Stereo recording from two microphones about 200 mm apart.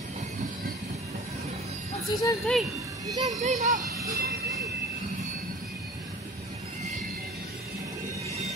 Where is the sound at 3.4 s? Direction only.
35° right (ahead or behind).